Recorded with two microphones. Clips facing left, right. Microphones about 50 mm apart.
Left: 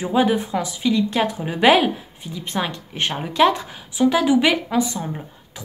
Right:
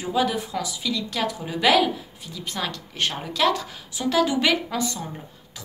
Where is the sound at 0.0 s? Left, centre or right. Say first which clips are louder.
Left 5 dB; left.